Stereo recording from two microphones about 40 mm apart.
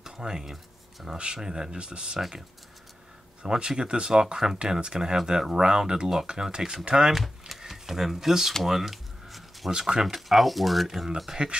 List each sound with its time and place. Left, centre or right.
0.0 s speech: centre
2.1 s speech: centre
3.4 s speech: centre
7.2 s a sound: centre
9.7 s speech: centre
10.0 s speech: centre
11.4 s speech: right